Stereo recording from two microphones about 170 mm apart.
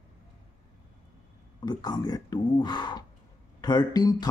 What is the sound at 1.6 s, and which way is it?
Speech, 25° left (ahead or behind).